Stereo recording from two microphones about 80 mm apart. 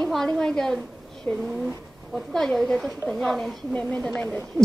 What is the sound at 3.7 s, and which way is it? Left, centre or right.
Speech, centre.